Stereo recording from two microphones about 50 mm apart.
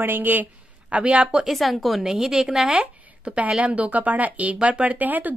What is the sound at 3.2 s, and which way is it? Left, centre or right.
A woman's voice, right.